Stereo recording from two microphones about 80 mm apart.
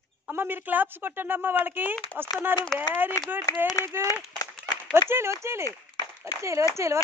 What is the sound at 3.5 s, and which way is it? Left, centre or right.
Speech, left.